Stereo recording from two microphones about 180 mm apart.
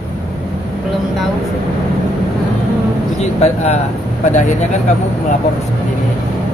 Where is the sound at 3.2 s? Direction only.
35° left (ahead or behind).